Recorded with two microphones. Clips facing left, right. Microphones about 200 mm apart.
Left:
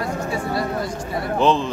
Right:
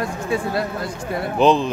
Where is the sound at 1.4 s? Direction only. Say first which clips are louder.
Right 3 dB; 15° right (ahead or behind).